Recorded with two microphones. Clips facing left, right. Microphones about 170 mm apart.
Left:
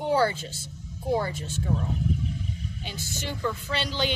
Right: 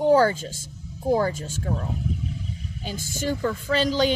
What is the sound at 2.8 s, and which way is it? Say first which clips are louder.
A woman's voice: right 9 dB; 45° right (ahead or behind).